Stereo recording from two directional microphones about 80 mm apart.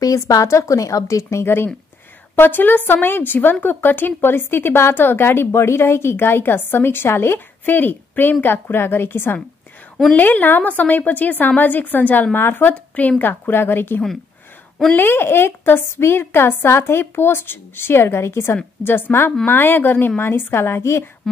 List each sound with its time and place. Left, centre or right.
0.0 s a woman's voice: left